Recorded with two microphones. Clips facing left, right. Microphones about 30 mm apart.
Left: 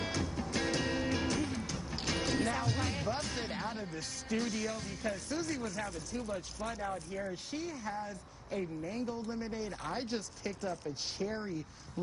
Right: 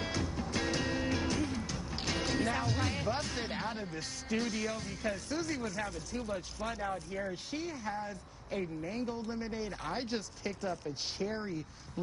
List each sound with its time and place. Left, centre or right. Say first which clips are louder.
0.1 s music: even; centre
2.8 s speech: right 1 dB; centre